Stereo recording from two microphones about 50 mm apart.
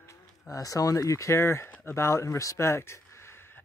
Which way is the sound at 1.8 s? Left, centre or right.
Left.